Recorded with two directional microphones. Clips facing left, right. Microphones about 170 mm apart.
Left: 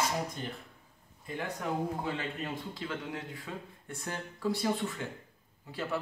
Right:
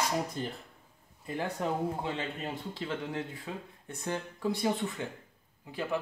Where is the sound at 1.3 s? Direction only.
25° right (ahead or behind).